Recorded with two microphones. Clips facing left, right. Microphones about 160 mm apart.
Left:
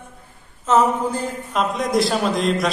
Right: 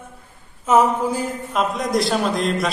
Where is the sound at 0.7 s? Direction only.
10° right (ahead or behind).